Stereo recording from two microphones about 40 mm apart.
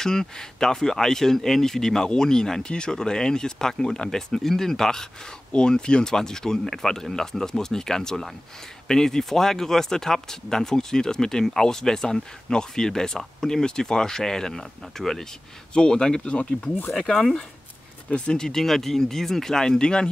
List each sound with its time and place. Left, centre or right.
0.0 s speech: centre
15.7 s speech: left
16.3 s speech: left
16.9 s speech: centre
18.4 s speech: centre